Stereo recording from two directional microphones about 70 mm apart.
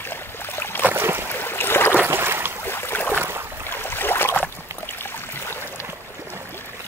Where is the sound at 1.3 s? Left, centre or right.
Left.